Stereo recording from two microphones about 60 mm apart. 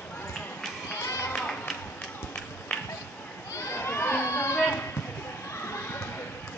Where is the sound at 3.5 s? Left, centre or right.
Left.